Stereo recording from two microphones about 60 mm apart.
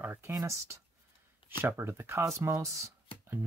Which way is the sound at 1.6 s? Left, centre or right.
Right.